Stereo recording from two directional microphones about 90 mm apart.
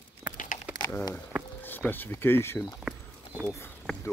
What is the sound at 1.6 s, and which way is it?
Speech, 20° left (ahead or behind).